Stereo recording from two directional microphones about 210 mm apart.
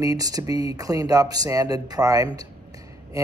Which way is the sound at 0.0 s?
15° right (ahead or behind).